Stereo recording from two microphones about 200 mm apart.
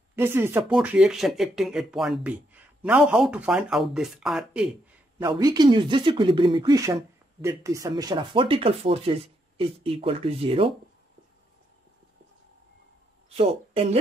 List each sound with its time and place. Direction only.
0.1 s speech: 10° right (ahead or behind)
5.2 s speech: 20° right (ahead or behind)
13.3 s speech: 30° right (ahead or behind)